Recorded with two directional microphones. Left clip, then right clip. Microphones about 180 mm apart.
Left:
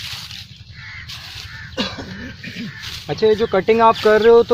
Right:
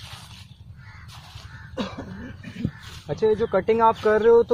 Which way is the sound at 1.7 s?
5° left (ahead or behind).